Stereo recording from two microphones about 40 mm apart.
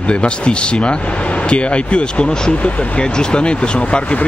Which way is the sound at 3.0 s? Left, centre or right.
Left.